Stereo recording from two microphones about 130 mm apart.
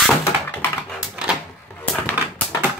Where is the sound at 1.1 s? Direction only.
5° right (ahead or behind).